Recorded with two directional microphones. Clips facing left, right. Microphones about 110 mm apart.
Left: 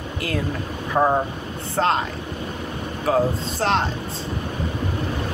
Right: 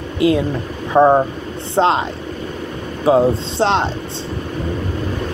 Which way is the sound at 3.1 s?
30° right (ahead or behind).